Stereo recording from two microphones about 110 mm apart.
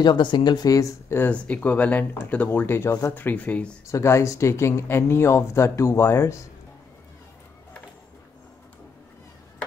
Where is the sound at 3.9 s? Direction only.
25° left (ahead or behind).